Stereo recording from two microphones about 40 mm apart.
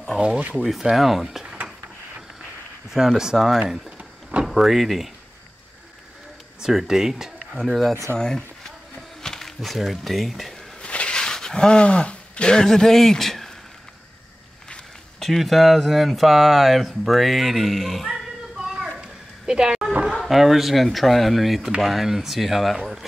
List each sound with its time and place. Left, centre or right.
0.2 s speech: right
0.6 s speech: centre
2.9 s speech: centre
6.7 s speech: centre
7.5 s speech: centre
8.2 s speech: centre
9.2 s a sound: centre
9.6 s speech: centre
10.8 s a sound: left; by 13.5 s centre
15.1 s speech: centre
18.0 s a sound: centre
18.9 s bow-wow: centre
20.2 s speech: centre